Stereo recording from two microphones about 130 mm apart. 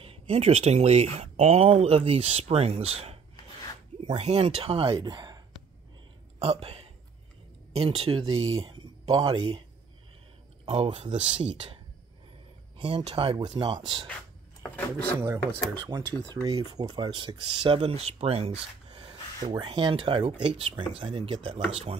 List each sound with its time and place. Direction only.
0.0 s speech: 50° right (ahead or behind)
4.2 s speech: 55° right (ahead or behind); by 5.4 s 35° right (ahead or behind)
6.4 s speech: 50° right (ahead or behind)
14.6 s speech: 15° left (ahead or behind)
15.1 s speech: 20° right (ahead or behind)
15.9 s speech: 35° right (ahead or behind); by 18.9 s 55° right (ahead or behind)
18.9 s speech: 35° right (ahead or behind)